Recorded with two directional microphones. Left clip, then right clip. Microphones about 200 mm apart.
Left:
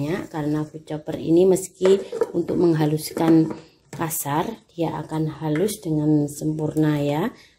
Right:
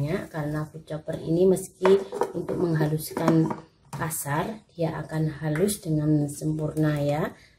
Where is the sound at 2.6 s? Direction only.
35° left (ahead or behind).